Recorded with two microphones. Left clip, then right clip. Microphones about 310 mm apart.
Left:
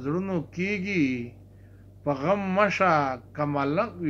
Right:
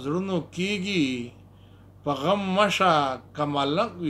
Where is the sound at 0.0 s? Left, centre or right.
Centre.